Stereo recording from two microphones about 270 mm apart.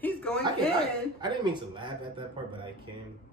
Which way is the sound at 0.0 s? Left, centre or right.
Centre.